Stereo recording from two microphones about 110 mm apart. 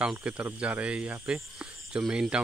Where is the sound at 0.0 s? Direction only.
10° right (ahead or behind).